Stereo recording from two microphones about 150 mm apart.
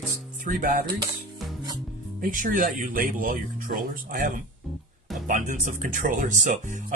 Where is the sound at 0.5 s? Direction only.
70° right (ahead or behind).